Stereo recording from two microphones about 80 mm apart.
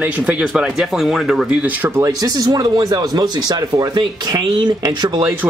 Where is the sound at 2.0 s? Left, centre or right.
Right.